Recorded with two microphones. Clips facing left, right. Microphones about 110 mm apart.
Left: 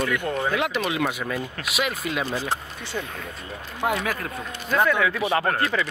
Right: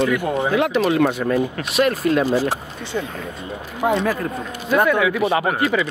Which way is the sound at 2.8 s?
20° right (ahead or behind).